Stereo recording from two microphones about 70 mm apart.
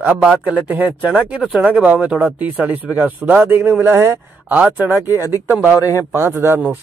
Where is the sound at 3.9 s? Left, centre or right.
Right.